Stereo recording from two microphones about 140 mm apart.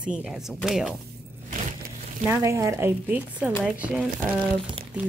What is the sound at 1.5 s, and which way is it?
Crushing, 65° right (ahead or behind).